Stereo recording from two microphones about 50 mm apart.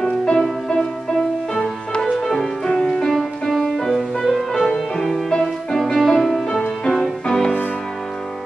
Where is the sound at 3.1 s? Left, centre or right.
Centre.